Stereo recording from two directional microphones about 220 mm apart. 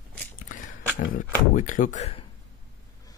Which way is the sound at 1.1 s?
35° left (ahead or behind).